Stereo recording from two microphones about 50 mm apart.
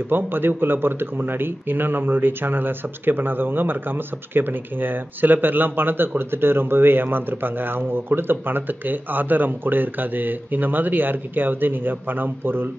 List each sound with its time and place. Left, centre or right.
0.1 s speech: right